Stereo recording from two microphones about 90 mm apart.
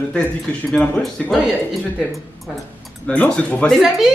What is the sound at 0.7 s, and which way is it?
Speech, 10° left (ahead or behind).